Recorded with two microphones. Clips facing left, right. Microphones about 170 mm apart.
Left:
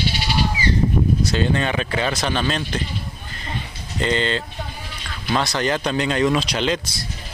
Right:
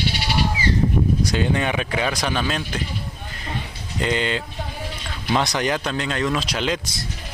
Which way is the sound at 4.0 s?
10° right (ahead or behind).